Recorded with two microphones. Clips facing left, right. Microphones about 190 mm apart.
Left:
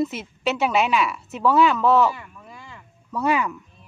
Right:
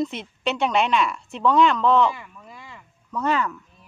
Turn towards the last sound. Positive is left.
turn(degrees=10)  # may be behind; listen again after turning